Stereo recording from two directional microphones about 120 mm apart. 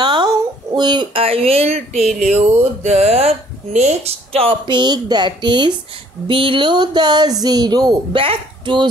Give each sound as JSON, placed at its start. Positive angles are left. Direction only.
{"t": 0.0, "sound": "a sound", "side_deg": -40}
{"t": 0.7, "sound": "speech", "side_deg": -40}
{"t": 2.0, "sound": "speech", "side_deg": 0}
{"t": 2.3, "sound": "speech", "side_deg": -65}
{"t": 8.2, "sound": "speech", "side_deg": -45}